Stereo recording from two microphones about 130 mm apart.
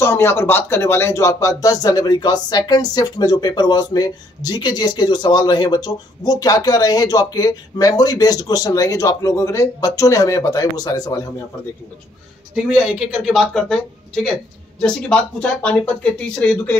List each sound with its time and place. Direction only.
0.0 s speech: 20° left (ahead or behind)
12.6 s speech: 5° right (ahead or behind)